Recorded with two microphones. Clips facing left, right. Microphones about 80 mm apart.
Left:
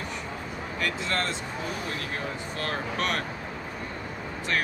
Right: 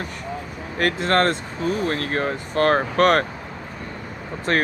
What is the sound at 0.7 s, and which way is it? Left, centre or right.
Speech, right.